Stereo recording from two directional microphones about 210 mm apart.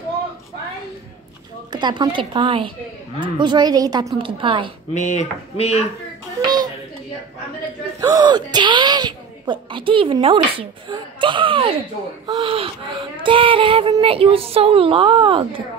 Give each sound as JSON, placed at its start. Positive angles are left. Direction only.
{"t": 1.7, "sound": "speech", "side_deg": -20}
{"t": 4.9, "sound": "speech", "side_deg": 35}
{"t": 6.4, "sound": "a sound", "side_deg": -20}
{"t": 8.0, "sound": "speech", "side_deg": -20}